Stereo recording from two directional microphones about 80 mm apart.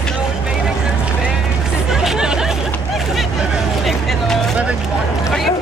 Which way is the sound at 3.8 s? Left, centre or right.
Centre.